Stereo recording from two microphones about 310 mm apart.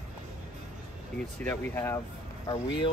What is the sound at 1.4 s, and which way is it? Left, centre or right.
Speech, centre.